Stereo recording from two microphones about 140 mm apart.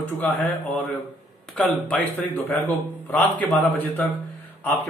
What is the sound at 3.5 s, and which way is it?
Speech, 10° left (ahead or behind).